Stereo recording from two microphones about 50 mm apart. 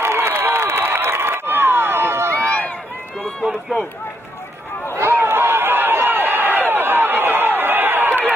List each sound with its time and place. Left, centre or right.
0.0 s crowd: right
2.4 s run: left
4.9 s a sound: right